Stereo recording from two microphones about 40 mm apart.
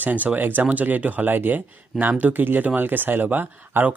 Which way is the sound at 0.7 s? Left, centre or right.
Right.